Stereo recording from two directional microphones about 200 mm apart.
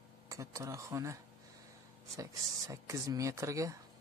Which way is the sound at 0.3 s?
15° right (ahead or behind).